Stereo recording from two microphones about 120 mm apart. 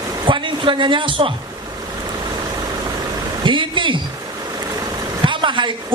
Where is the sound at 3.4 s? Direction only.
40° right (ahead or behind).